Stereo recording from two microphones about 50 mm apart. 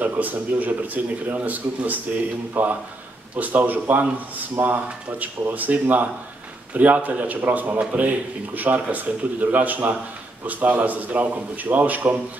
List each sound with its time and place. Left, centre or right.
0.0 s speech: right